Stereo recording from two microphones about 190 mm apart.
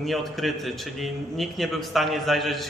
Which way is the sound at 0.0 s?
Centre (ahead or behind).